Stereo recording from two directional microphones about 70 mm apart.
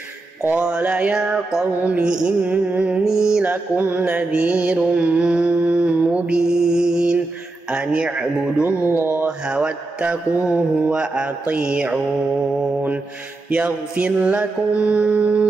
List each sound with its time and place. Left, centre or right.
0.6 s a man's voice: centre
1.8 s mantra: centre
3.0 s a man's voice: centre
3.4 s mantra: right
7.7 s a man's voice: centre
8.6 s music: right
9.2 s a man's voice: centre
13.5 s mantra: centre